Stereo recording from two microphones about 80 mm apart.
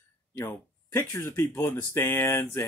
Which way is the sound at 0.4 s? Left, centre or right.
Left.